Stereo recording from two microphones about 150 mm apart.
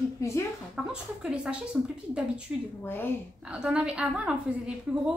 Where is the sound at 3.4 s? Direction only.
5° right (ahead or behind).